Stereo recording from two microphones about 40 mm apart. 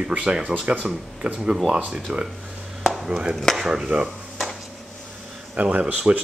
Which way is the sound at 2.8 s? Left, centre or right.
Centre.